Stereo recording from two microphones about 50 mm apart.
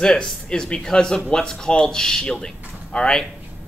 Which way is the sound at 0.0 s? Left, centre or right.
Centre.